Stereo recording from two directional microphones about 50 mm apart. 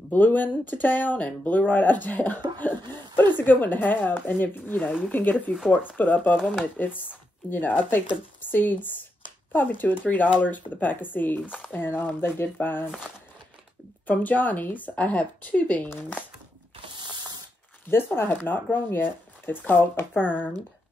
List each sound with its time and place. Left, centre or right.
0.1 s speech: left
14.0 s speech: left
17.8 s speech: left